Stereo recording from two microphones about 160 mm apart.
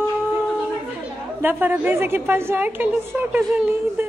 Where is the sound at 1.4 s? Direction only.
10° right (ahead or behind).